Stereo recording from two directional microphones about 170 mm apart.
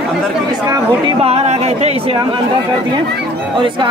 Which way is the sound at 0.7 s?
30° right (ahead or behind).